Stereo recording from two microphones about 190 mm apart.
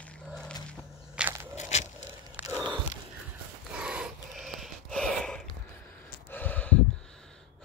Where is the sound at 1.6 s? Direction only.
40° left (ahead or behind).